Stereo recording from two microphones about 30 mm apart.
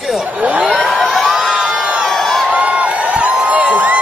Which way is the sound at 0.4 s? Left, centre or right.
Right.